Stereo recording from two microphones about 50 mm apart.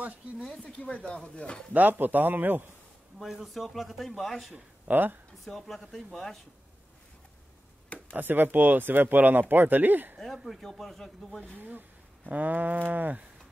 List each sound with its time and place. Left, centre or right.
0.7 s speech: left
1.7 s speech: right
3.2 s speech: centre
4.8 s speech: right
5.4 s speech: centre
8.1 s speech: right
10.1 s speech: centre
11.5 s speech: right